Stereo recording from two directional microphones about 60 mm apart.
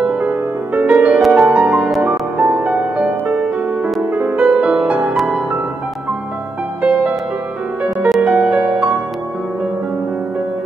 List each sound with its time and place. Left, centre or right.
0.0 s music: centre
0.7 s music: right
1.9 s music: centre
2.6 s music: right
4.1 s music: right
4.7 s music: centre
6.8 s music: right
8.2 s music: right